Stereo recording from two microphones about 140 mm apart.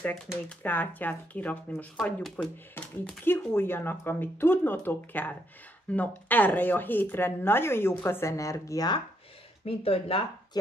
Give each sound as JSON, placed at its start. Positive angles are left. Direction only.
{"t": 0.6, "sound": "speech", "side_deg": 10}
{"t": 9.7, "sound": "speech", "side_deg": 45}